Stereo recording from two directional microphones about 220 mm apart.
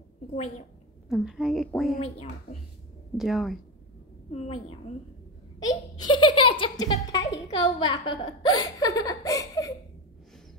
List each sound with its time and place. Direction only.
1.0 s a woman's voice: centre (ahead or behind)
2.0 s a woman's voice: 25° left (ahead or behind)
3.2 s a woman's voice: centre (ahead or behind)
4.3 s a woman's voice: 25° left (ahead or behind)
5.6 s a sound: 20° left (ahead or behind)
8.1 s laughter: 20° left (ahead or behind)